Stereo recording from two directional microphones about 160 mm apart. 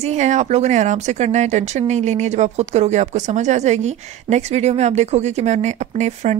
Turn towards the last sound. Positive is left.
turn(degrees=-45)  # may be behind; listen again after turning